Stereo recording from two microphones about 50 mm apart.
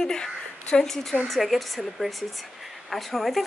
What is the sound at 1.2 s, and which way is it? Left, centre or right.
Speech, centre.